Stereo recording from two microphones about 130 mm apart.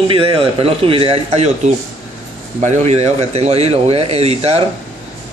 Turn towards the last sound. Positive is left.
turn(degrees=-50)  # may be behind; listen again after turning